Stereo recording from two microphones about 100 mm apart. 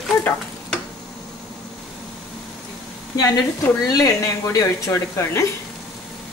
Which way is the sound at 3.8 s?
35° left (ahead or behind).